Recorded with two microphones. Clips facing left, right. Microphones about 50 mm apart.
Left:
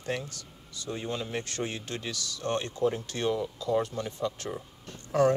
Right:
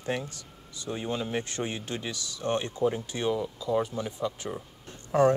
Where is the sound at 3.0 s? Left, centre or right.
Centre.